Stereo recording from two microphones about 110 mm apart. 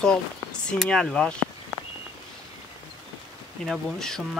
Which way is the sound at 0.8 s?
5° left (ahead or behind).